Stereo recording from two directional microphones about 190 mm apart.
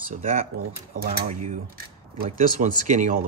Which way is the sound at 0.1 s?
45° right (ahead or behind).